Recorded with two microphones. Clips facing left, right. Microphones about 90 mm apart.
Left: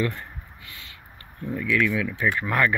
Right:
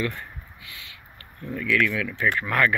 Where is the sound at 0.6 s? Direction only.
40° left (ahead or behind).